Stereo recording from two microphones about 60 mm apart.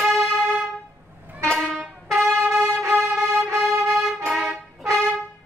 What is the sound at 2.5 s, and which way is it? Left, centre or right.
Violin, centre.